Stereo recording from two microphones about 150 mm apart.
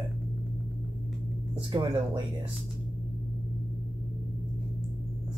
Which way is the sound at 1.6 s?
30° right (ahead or behind).